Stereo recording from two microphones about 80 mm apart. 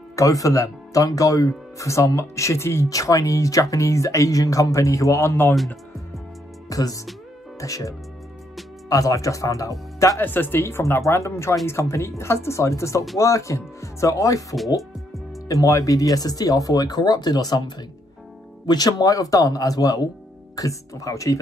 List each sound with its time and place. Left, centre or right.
0.1 s speech: left
6.7 s music: left
7.6 s speech: left
10.2 s speech: left
14.8 s music: centre
15.4 s speech: left